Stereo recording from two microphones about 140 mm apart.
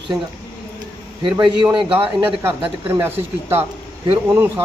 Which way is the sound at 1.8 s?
40° right (ahead or behind).